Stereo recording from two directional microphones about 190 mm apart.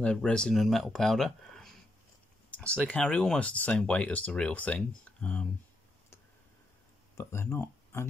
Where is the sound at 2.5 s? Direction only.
5° left (ahead or behind).